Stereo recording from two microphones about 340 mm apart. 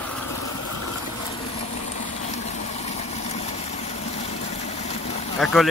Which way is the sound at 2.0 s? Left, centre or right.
Centre.